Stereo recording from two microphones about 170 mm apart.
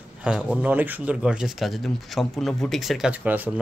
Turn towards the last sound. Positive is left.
turn(degrees=-10)  # may be behind; listen again after turning